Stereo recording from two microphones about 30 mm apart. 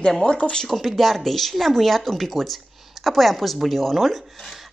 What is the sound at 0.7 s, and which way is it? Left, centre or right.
Speech, centre.